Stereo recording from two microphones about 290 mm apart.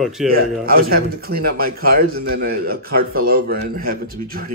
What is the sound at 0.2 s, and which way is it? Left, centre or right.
Speech, centre.